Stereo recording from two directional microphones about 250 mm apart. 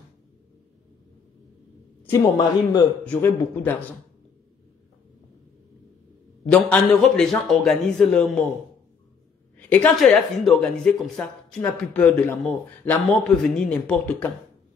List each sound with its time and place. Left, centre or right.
2.1 s speech: centre
6.5 s speech: centre
9.6 s speech: centre